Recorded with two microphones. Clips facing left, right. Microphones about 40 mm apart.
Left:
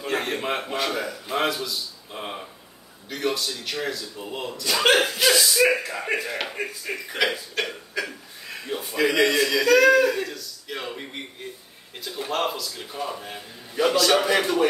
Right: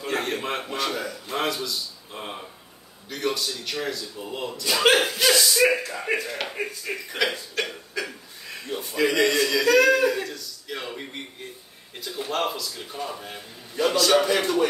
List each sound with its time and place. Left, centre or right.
0.0 s a man's voice: centre